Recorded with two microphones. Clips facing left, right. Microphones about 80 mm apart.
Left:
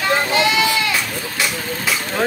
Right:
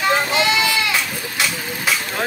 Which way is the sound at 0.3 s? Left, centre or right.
Left.